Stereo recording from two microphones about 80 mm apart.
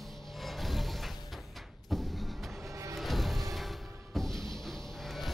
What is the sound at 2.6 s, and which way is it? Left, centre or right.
Music, right.